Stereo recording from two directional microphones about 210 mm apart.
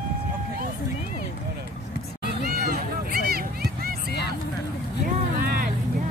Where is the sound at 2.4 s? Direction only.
45° right (ahead or behind).